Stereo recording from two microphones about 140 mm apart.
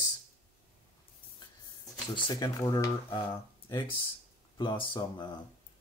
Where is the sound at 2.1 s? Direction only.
35° left (ahead or behind).